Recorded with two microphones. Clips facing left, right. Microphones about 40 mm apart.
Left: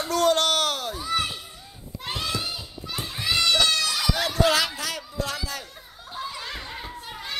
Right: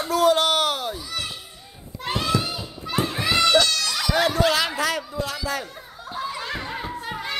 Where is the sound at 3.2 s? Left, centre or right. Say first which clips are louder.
Right 3 dB; centre.